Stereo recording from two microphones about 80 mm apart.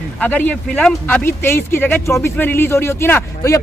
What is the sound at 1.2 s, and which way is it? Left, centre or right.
Speech, left.